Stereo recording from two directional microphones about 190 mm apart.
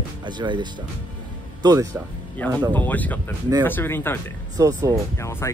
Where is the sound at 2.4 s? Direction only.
10° left (ahead or behind).